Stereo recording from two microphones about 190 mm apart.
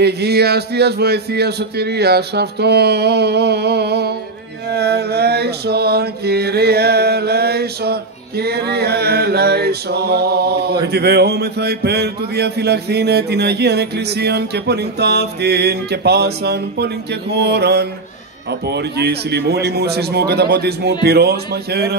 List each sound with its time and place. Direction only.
0.0 s mantra: 60° right (ahead or behind)